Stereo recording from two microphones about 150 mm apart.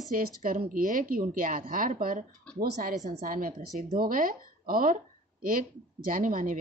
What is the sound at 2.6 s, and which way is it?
Speech, 90° right.